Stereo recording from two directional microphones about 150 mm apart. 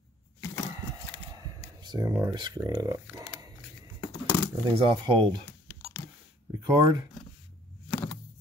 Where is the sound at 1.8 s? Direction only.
25° right (ahead or behind).